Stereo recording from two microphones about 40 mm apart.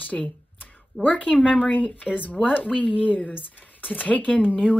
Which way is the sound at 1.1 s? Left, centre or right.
Left.